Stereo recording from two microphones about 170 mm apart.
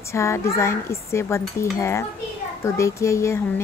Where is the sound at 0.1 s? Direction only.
15° left (ahead or behind).